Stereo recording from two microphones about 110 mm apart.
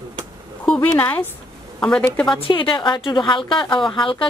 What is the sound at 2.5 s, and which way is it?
A woman's voice, 50° left (ahead or behind).